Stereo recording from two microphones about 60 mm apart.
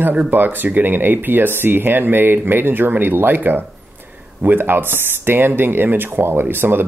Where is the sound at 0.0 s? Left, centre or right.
Right.